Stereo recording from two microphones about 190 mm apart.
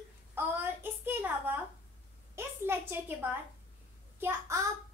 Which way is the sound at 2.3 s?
10° right (ahead or behind).